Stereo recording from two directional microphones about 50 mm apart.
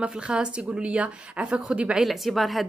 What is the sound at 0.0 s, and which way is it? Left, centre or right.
Speech, right.